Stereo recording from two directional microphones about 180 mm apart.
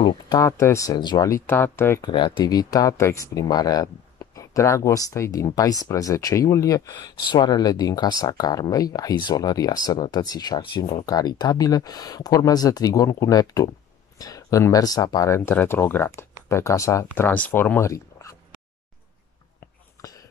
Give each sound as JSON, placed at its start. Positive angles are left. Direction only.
{"t": 0.0, "sound": "speech", "side_deg": 20}
{"t": 2.0, "sound": "speech", "side_deg": 25}
{"t": 20.0, "sound": "a sound", "side_deg": 20}